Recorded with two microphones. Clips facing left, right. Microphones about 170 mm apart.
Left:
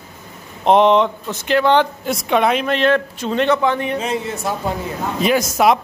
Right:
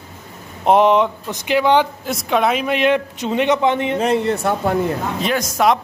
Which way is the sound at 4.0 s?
60° right (ahead or behind).